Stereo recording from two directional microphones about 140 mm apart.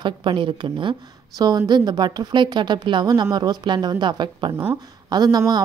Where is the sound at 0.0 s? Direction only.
35° right (ahead or behind).